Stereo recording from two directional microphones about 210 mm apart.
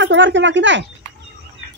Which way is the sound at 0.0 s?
60° right (ahead or behind).